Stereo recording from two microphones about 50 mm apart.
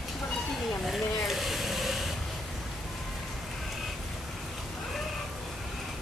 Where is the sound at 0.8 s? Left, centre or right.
Centre.